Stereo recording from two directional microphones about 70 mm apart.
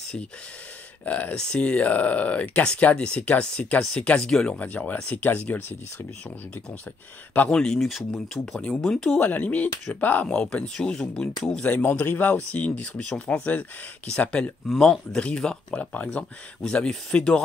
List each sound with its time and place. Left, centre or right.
1.0 s speech: left
4.6 s speech: left
7.4 s speech: centre
9.1 s speech: left
11.8 s speech: left
14.8 s speech: centre